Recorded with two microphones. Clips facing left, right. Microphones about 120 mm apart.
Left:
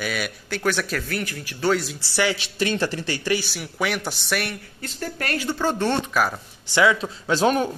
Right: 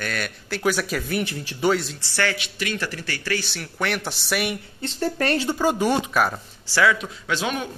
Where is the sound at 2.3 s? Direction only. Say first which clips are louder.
Left 5 dB; 30° left (ahead or behind).